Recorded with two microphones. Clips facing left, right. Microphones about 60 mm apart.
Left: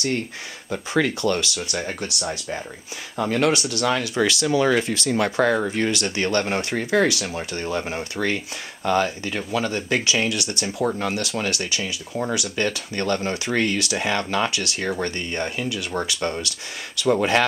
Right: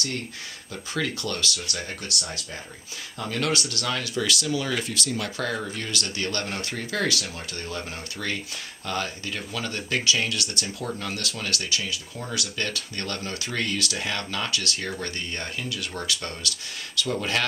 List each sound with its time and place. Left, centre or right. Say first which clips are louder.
0.7 s speech: left 8 dB; left